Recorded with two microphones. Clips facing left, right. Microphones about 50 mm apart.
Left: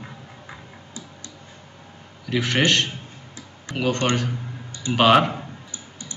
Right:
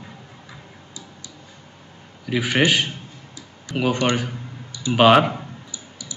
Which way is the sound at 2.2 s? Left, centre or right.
Centre.